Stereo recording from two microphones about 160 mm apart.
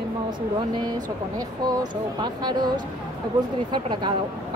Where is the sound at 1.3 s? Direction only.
25° right (ahead or behind).